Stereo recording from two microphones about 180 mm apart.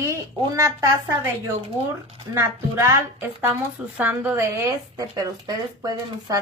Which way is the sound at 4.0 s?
10° right (ahead or behind).